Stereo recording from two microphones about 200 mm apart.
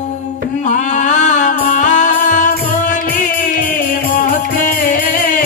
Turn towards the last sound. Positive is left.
turn(degrees=45)  # may be behind; listen again after turning